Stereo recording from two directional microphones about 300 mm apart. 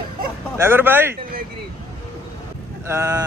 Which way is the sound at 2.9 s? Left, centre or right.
Centre.